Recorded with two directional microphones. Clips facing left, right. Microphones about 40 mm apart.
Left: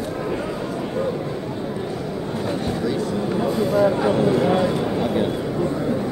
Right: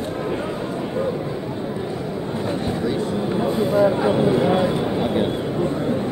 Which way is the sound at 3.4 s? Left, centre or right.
Right.